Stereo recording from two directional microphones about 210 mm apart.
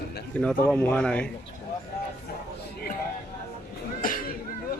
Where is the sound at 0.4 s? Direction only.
5° left (ahead or behind).